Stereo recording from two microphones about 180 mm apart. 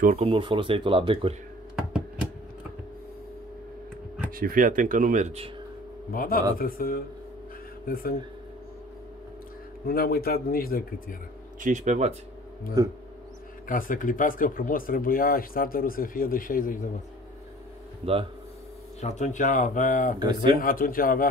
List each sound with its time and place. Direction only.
0.2 s speech: 25° right (ahead or behind)
4.3 s speech: 50° right (ahead or behind)
6.1 s speech: 55° left (ahead or behind)
9.8 s speech: 55° left (ahead or behind)
11.6 s speech: 40° right (ahead or behind)
12.8 s speech: 20° right (ahead or behind)
13.7 s speech: 50° left (ahead or behind)
18.0 s speech: 30° right (ahead or behind)
18.9 s speech: 40° left (ahead or behind)
20.2 s speech: 25° right (ahead or behind)
20.6 s speech: 50° left (ahead or behind)